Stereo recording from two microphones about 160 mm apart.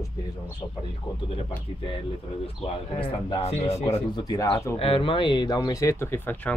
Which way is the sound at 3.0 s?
30° left (ahead or behind).